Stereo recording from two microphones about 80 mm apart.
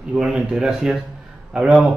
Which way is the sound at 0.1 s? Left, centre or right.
Centre.